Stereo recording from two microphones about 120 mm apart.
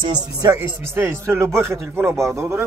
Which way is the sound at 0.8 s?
20° right (ahead or behind).